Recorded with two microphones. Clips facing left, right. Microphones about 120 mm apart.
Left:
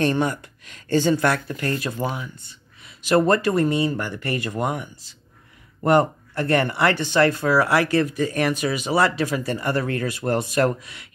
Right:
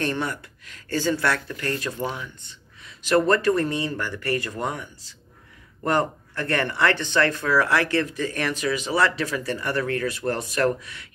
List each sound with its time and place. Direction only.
0.2 s speech: 20° left (ahead or behind)
5.9 s speech: 15° left (ahead or behind)
7.3 s speech: 30° left (ahead or behind)
7.6 s speech: 15° left (ahead or behind)